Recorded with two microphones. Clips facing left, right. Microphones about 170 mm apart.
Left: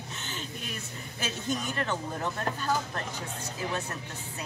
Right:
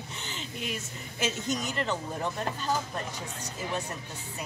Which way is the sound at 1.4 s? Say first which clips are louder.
Left 4 dB; 15° right (ahead or behind).